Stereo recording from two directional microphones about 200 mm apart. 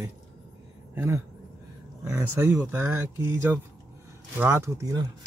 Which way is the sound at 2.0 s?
15° right (ahead or behind).